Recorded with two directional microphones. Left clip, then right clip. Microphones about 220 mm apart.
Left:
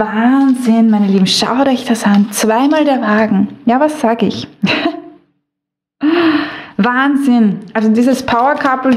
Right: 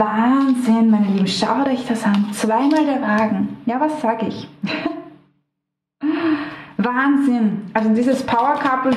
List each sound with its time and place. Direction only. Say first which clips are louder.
0.2 s a woman's voice: left 5 dB; 40° left (ahead or behind)
5.9 s speech: left 8 dB; 45° left (ahead or behind)